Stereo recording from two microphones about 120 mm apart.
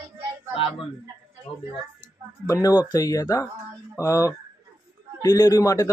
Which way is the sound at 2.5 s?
30° left (ahead or behind).